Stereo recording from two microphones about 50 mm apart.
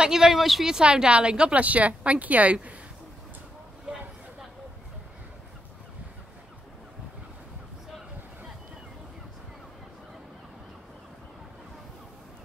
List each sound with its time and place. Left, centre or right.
0.0 s speech: centre
0.7 s speech: centre